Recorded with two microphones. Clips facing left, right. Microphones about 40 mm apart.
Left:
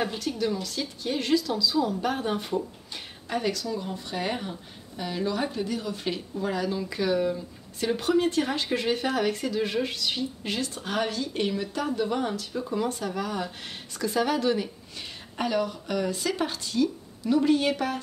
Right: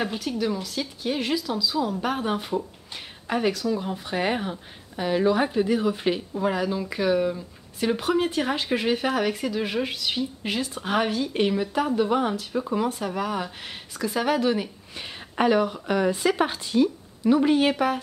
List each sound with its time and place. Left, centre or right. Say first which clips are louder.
0.0 s speech: right 1 dB; centre
15.0 s speech: right 7 dB; right